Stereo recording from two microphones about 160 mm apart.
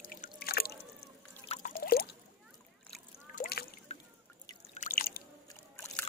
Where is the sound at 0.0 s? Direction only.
60° left (ahead or behind).